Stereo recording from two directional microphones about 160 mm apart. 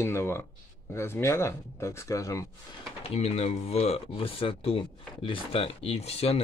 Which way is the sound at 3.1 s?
40° left (ahead or behind).